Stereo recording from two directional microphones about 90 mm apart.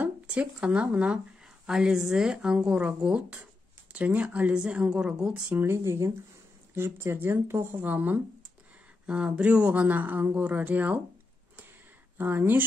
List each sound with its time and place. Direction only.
0.0 s speech: 15° right (ahead or behind)
5.6 s speech: 30° right (ahead or behind)
12.2 s speech: 20° right (ahead or behind)